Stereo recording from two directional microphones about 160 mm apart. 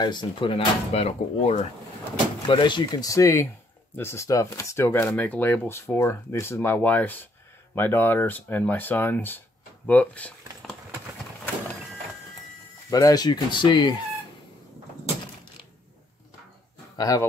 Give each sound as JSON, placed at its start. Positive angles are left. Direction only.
{"t": 0.0, "sound": "speech", "side_deg": 25}
{"t": 2.4, "sound": "speech", "side_deg": 30}
{"t": 9.8, "sound": "a sound", "side_deg": 10}
{"t": 12.9, "sound": "speech", "side_deg": 25}
{"t": 16.9, "sound": "speech", "side_deg": 20}